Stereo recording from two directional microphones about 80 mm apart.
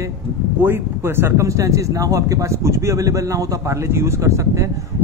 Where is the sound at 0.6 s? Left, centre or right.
Right.